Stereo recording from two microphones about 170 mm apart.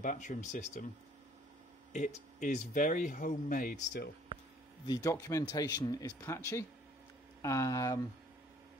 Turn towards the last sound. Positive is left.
turn(degrees=20)  # may be behind; listen again after turning